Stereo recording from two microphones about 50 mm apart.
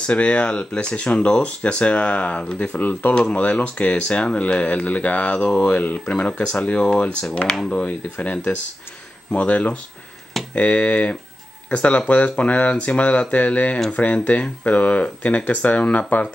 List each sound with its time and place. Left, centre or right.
0.0 s speech: left